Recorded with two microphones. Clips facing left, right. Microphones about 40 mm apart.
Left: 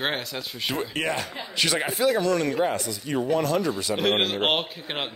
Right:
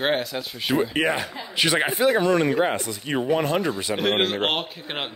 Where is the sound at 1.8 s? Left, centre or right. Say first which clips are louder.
Right 3 dB; right.